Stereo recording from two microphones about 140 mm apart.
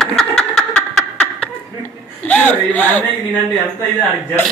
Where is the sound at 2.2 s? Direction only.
10° left (ahead or behind).